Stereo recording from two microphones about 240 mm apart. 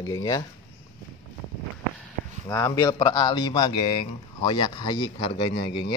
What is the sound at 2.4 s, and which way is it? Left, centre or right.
Speech, centre.